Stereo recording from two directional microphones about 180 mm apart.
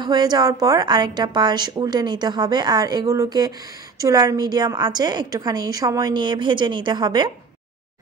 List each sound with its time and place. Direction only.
0.0 s a woman's voice: 25° right (ahead or behind)